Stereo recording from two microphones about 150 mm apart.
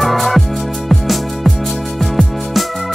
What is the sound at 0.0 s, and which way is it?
Music, centre (ahead or behind).